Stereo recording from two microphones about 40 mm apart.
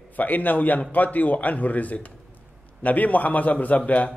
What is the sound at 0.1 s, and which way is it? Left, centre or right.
A man's voice, left.